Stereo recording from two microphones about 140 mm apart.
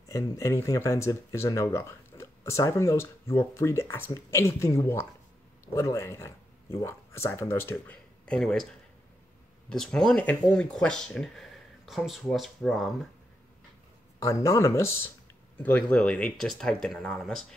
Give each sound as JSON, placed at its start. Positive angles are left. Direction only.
{"t": 0.1, "sound": "speech", "side_deg": 20}
{"t": 9.7, "sound": "speech", "side_deg": 5}
{"t": 14.2, "sound": "speech", "side_deg": 20}